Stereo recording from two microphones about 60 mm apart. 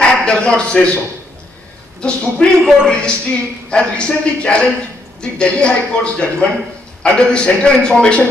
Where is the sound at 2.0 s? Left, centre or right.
Centre.